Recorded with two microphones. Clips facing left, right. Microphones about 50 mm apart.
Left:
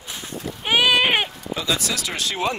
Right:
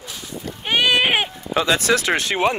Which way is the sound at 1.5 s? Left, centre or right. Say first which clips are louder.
Right 6 dB; right.